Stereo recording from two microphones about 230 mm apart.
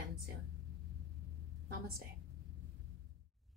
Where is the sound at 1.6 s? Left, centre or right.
Right.